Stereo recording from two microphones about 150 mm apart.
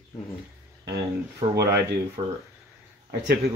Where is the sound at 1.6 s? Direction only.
90° right.